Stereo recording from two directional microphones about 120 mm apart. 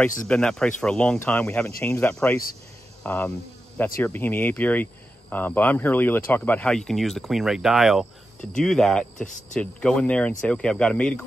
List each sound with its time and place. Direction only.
0.3 s speech: 5° left (ahead or behind)